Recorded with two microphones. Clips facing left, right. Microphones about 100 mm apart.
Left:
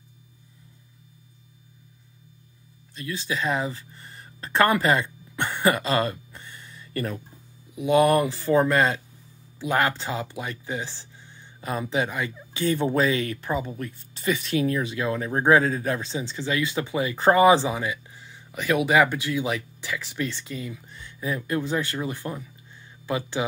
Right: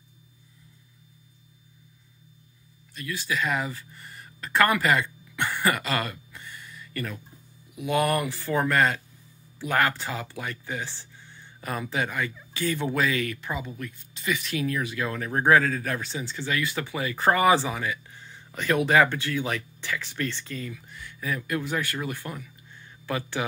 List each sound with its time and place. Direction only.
2.9 s speech: 25° left (ahead or behind)
18.2 s speech: 5° left (ahead or behind)
20.9 s speech: 25° left (ahead or behind)